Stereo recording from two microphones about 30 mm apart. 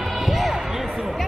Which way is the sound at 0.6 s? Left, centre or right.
Centre.